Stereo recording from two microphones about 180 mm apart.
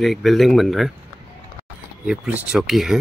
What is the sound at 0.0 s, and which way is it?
Speech, centre (ahead or behind).